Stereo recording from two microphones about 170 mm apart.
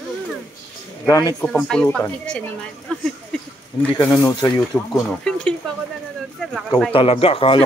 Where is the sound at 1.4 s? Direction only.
5° left (ahead or behind).